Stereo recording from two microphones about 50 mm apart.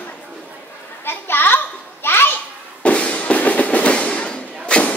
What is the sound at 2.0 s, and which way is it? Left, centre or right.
Children playing, left.